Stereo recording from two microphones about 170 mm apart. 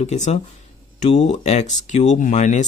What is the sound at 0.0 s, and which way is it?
Speech, 40° left (ahead or behind).